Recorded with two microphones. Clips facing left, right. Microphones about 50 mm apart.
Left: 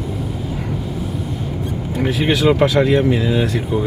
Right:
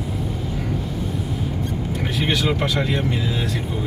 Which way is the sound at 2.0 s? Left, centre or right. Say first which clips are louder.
Left 7 dB; centre.